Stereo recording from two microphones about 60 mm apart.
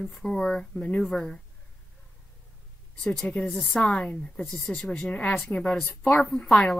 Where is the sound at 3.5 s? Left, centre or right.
Centre.